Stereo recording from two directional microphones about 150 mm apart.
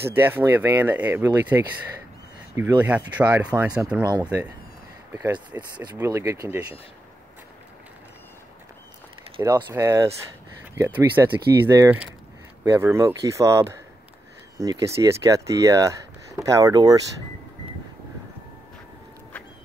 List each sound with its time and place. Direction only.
0.0 s speech: 15° right (ahead or behind)
5.1 s speech: 15° right (ahead or behind)
9.4 s speech: 20° right (ahead or behind)